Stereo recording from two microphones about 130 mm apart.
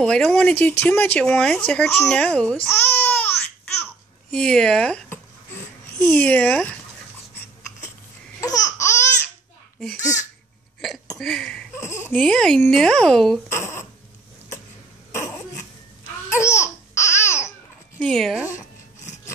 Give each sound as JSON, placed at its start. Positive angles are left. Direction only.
{"t": 0.0, "sound": "speech", "side_deg": 5}
{"t": 4.3, "sound": "speech", "side_deg": 5}
{"t": 8.4, "sound": "laughter", "side_deg": 25}
{"t": 11.1, "sound": "a sound", "side_deg": 0}
{"t": 11.7, "sound": "speech", "side_deg": 20}
{"t": 13.5, "sound": "speech", "side_deg": 20}
{"t": 16.3, "sound": "babbling", "side_deg": 20}
{"t": 17.9, "sound": "speech", "side_deg": 5}